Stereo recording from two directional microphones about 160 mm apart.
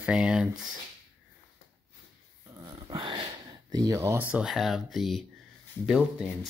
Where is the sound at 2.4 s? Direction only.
30° right (ahead or behind).